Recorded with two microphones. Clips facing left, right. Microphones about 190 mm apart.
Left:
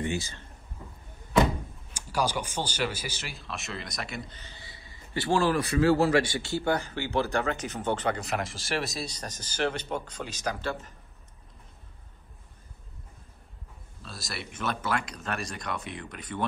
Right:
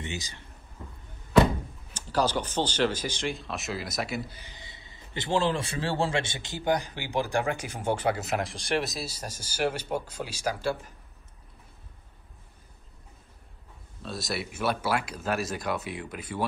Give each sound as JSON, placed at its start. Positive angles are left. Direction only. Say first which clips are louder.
{"t": 0.0, "sound": "speech", "louder": "left 6 dB", "side_deg": -20}
{"t": 2.0, "sound": "speech", "louder": "right 2 dB", "side_deg": 10}
{"t": 14.0, "sound": "speech", "louder": "right 7 dB", "side_deg": 0}